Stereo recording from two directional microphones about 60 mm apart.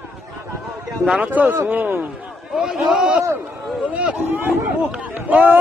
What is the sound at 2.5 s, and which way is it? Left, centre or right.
A man's voice, centre.